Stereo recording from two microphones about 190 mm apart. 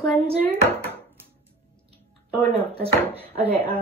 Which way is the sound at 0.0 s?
10° left (ahead or behind).